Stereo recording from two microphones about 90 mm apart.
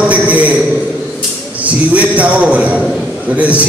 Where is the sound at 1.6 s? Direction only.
15° right (ahead or behind).